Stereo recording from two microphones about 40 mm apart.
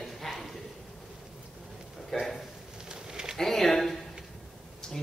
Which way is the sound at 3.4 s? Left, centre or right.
Centre.